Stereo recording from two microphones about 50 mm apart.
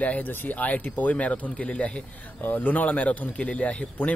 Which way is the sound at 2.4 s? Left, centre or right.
Left.